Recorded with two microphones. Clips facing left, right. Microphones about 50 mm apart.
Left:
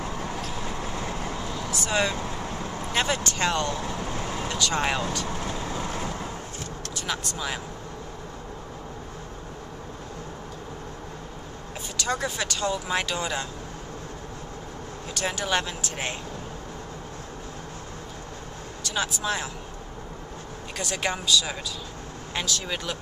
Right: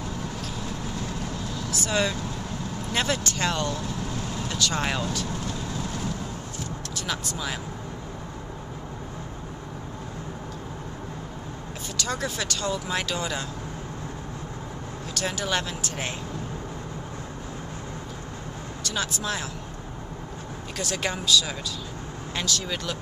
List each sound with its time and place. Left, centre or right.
0.7 s vehicle: left
1.7 s speech: centre
4.1 s vehicle: left
4.5 s speech: centre
5.4 s vehicle: left
7.0 s speech: centre
12.0 s speech: centre
15.1 s speech: centre
18.8 s speech: centre
20.7 s speech: centre